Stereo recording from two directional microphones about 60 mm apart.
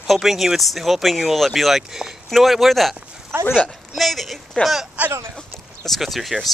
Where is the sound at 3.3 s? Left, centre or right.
Right.